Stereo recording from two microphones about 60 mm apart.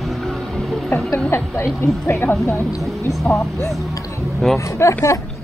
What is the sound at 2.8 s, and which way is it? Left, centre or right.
Speech, centre.